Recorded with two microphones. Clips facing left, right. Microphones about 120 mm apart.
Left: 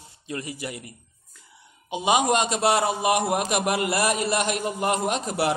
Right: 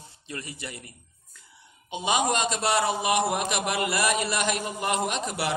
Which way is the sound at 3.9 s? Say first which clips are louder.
Left 3 dB; 50° left (ahead or behind).